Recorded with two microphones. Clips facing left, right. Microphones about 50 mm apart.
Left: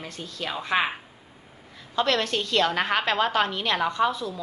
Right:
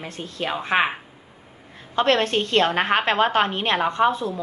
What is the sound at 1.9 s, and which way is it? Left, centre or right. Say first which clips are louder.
A woman's voice: right 5 dB; right.